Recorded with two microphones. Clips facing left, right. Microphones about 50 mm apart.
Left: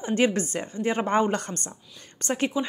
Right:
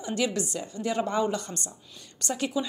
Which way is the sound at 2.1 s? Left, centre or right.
Left.